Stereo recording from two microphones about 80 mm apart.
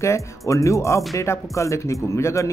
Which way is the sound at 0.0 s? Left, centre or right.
Left.